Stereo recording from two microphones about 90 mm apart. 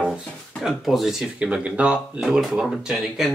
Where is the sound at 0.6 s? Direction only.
Centre (ahead or behind).